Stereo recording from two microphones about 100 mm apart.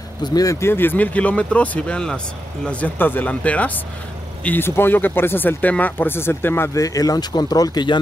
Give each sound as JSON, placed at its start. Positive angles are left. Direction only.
{"t": 0.2, "sound": "speech", "side_deg": 40}
{"t": 6.7, "sound": "speech", "side_deg": 35}